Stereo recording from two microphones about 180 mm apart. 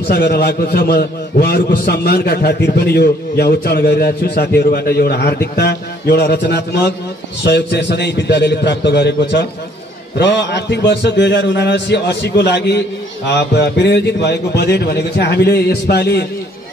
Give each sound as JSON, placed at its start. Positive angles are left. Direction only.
{"t": 0.1, "sound": "a man's voice", "side_deg": 65}